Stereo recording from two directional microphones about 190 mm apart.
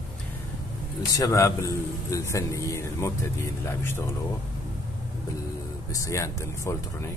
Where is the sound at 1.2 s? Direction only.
15° left (ahead or behind).